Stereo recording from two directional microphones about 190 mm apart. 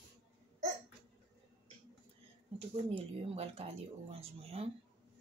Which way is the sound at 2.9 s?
30° right (ahead or behind).